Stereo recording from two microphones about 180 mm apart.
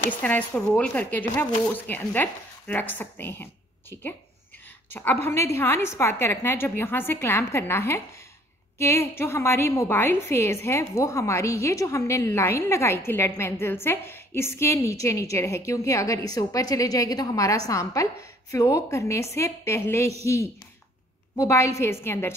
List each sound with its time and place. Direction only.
0.2 s a woman's voice: 10° left (ahead or behind)
21.4 s a woman's voice: 15° left (ahead or behind)